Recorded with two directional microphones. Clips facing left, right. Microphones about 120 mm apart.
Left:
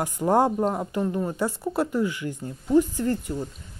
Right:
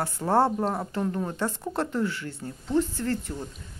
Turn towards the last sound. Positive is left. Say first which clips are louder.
# left 3 dB
turn(degrees=15)  # may be behind; listen again after turning